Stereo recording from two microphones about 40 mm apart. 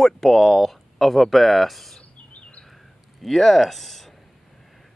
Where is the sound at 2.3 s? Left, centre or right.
Left.